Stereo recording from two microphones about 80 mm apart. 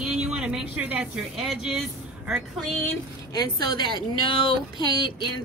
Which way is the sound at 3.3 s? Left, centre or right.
Left.